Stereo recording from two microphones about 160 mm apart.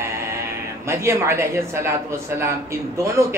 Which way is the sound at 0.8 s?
15° right (ahead or behind).